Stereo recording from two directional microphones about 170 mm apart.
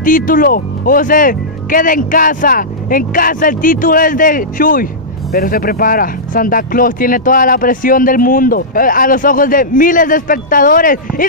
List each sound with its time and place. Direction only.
0.0 s speech: 55° left (ahead or behind)